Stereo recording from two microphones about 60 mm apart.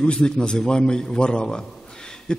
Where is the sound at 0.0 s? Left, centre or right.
Centre.